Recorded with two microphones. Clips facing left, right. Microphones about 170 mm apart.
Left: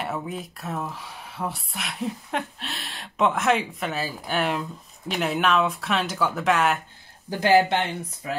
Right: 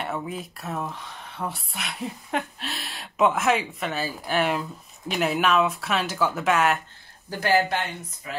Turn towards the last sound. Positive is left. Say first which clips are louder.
# left 4 dB
turn(degrees=25)  # may be behind; listen again after turning